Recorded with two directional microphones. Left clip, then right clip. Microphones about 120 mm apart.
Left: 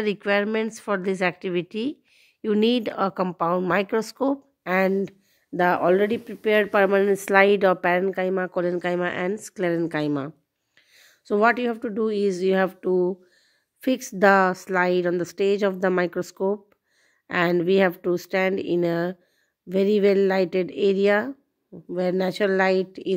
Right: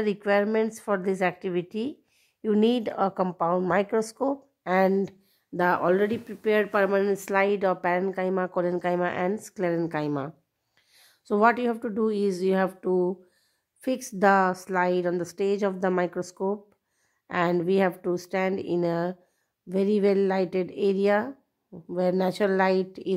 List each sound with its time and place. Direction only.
0.0 s speech: 25° left (ahead or behind)
8.1 s a woman's voice: 15° left (ahead or behind)